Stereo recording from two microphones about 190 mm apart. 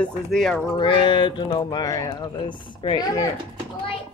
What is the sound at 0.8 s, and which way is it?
Speech, 25° left (ahead or behind).